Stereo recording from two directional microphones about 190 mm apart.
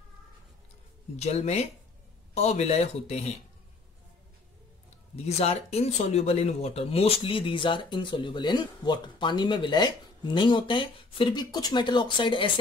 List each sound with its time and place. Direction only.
1.1 s speech: 35° left (ahead or behind)
5.1 s speech: 35° left (ahead or behind)